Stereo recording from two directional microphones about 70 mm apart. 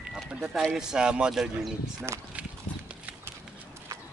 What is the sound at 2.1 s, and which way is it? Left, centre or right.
Speech, right.